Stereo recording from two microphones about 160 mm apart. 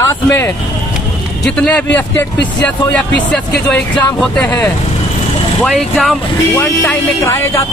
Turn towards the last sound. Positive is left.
turn(degrees=15)  # may be behind; listen again after turning